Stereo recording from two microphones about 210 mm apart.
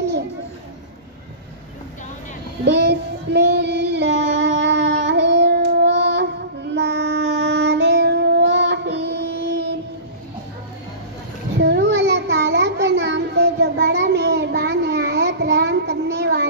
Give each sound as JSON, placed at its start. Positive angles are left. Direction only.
{"t": 2.6, "sound": "child singing", "side_deg": -55}
{"t": 11.6, "sound": "a sound", "side_deg": -55}
{"t": 12.8, "sound": "child singing", "side_deg": -55}